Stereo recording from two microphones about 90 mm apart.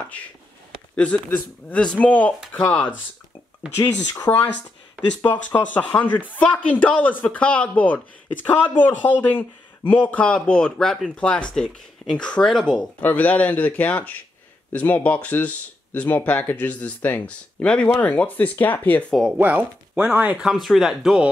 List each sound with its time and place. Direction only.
0.9 s speech: 15° left (ahead or behind)
3.7 s speech: 30° left (ahead or behind)
5.6 s speech: 20° left (ahead or behind)
13.0 s speech: 20° left (ahead or behind)
19.3 s speech: 15° right (ahead or behind)
20.3 s speech: 5° right (ahead or behind)